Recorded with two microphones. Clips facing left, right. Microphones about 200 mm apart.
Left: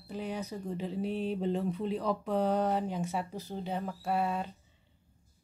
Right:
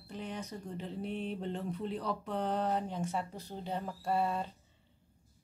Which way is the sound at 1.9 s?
10° left (ahead or behind).